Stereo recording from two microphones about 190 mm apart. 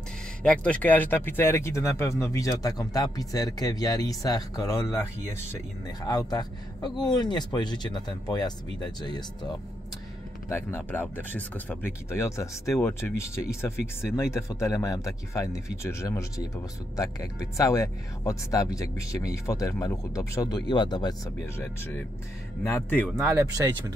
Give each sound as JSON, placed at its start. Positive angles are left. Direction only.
{"t": 0.4, "sound": "speech", "side_deg": 5}
{"t": 10.5, "sound": "speech", "side_deg": 10}
{"t": 21.5, "sound": "speech", "side_deg": 10}
{"t": 23.2, "sound": "speech", "side_deg": -15}